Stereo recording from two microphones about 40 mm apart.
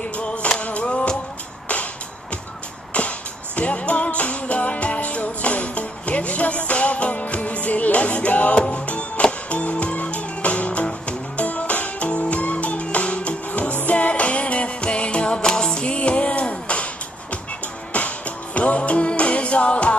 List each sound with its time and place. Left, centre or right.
0.2 s music: left
2.9 s music: left
15.4 s music: centre
15.7 s music: left
17.9 s music: left